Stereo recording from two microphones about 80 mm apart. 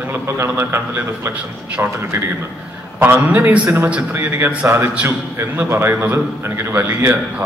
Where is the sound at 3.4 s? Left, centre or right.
Right.